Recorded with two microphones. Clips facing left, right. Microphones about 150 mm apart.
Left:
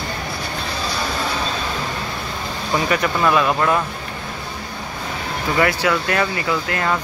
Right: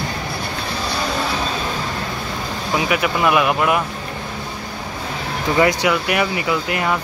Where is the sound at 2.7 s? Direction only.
10° right (ahead or behind).